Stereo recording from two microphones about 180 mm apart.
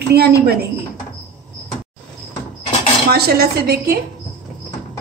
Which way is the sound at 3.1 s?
60° right (ahead or behind).